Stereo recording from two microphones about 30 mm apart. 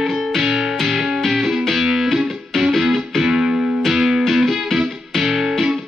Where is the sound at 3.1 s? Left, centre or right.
Centre.